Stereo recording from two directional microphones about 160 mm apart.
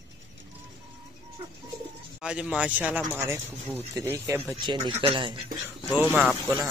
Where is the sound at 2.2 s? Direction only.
5° right (ahead or behind); by 5.4 s 30° right (ahead or behind).